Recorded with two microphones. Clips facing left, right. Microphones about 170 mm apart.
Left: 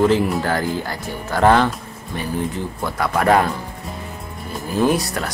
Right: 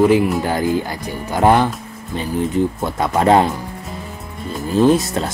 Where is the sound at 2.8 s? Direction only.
25° right (ahead or behind).